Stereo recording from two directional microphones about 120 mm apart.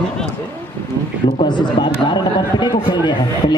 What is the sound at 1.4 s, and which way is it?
A man's voice, 40° left (ahead or behind).